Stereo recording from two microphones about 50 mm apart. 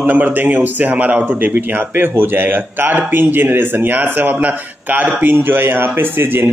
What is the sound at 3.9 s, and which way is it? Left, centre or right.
Speech, right.